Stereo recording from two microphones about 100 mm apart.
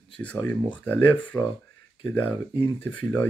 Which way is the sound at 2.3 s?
55° left (ahead or behind).